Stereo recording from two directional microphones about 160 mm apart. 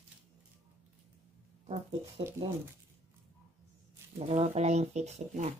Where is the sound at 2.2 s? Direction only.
35° right (ahead or behind).